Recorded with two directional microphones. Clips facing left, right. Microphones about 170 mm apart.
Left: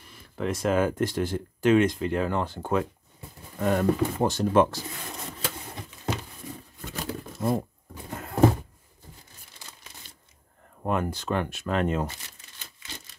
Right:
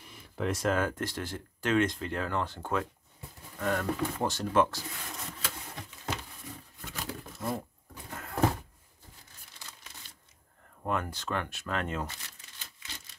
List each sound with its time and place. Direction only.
0.4 s speech: centre (ahead or behind)
0.7 s speech: 15° left (ahead or behind)
6.9 s bird: 30° left (ahead or behind)
8.1 s a sound: 25° left (ahead or behind)
10.8 s speech: 20° left (ahead or behind)